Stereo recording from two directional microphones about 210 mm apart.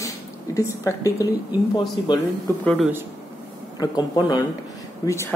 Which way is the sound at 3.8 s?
20° left (ahead or behind).